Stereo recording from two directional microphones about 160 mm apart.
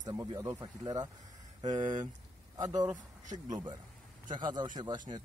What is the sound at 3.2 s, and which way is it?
Speech, 50° right (ahead or behind).